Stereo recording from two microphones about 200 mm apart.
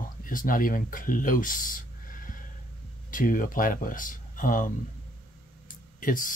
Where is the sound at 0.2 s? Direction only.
45° left (ahead or behind).